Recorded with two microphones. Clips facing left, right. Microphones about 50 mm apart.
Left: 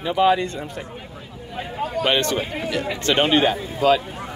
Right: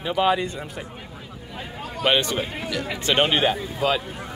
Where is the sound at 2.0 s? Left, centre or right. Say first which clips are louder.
Right 1 dB; centre.